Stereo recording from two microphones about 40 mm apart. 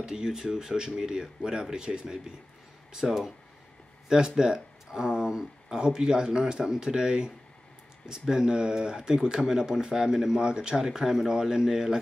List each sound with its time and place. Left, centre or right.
0.0 s speech: centre
4.1 s speech: centre
10.9 s speech: centre